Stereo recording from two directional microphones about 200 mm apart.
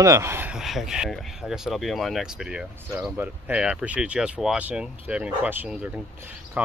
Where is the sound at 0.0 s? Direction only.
15° right (ahead or behind).